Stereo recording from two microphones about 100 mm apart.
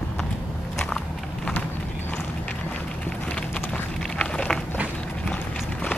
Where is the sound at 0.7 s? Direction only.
5° left (ahead or behind).